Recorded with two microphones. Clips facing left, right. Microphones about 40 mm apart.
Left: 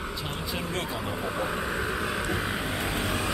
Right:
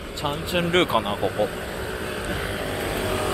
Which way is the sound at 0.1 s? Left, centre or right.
Right.